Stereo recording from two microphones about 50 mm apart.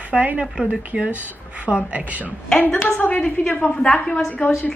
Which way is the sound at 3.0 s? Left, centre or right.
Left.